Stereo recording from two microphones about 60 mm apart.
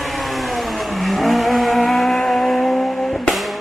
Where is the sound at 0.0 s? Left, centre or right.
Centre.